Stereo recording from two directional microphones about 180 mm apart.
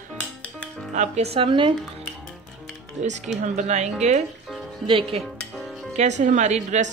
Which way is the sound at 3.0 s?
40° right (ahead or behind).